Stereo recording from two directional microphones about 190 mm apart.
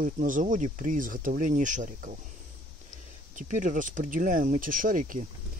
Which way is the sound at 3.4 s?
40° right (ahead or behind).